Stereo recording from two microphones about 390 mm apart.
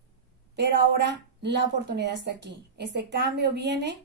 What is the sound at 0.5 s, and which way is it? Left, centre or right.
A woman's voice, right.